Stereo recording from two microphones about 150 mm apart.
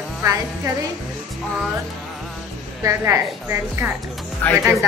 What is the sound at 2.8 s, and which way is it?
A woman's voice, 20° right (ahead or behind).